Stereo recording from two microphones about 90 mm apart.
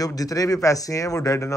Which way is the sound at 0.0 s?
40° left (ahead or behind).